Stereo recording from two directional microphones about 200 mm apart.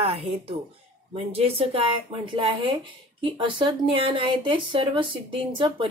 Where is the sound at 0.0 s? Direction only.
30° right (ahead or behind).